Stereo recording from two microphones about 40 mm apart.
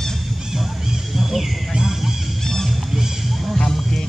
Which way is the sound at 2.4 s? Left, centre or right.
Centre.